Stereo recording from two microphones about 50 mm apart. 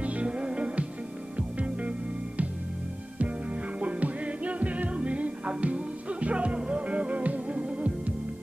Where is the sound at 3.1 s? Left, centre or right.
Right.